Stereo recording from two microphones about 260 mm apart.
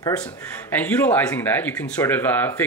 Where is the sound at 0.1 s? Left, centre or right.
Centre.